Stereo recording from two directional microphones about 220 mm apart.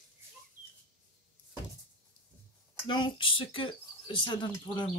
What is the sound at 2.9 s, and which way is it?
Speech, 20° left (ahead or behind).